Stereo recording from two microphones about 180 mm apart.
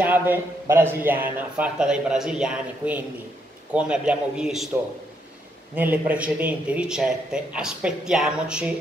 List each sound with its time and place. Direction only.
0.0 s a man's voice: 10° right (ahead or behind)
5.8 s a man's voice: 10° right (ahead or behind)